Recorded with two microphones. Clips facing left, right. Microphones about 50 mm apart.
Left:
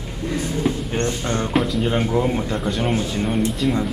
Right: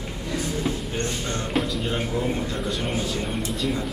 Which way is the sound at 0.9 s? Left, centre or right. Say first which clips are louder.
Left 5 dB; left.